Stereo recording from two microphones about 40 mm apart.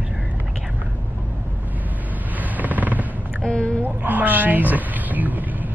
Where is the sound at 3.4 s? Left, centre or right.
Left.